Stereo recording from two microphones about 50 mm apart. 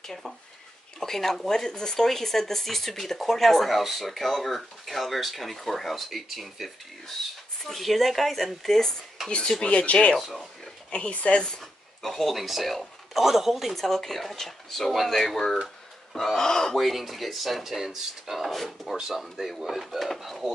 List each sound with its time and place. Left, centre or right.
0.0 s speech: centre
9.6 s a woman's voice: left
10.1 s speech: centre
10.9 s a woman's voice: left
12.0 s speech: centre
16.1 s gasp: centre
16.7 s speech: centre